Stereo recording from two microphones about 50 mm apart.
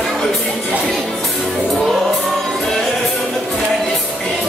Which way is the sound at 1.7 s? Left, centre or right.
Centre.